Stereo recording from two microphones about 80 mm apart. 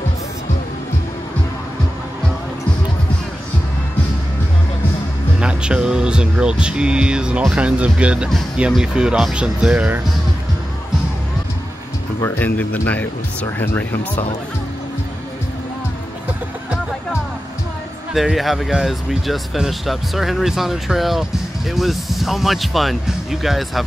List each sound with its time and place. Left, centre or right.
5.4 s speech: centre
12.4 s speech: left
18.1 s speech: centre